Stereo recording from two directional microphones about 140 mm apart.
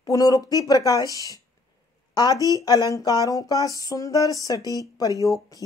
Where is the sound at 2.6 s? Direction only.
25° left (ahead or behind).